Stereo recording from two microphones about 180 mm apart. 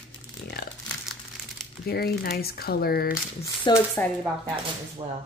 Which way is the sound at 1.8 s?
60° left (ahead or behind).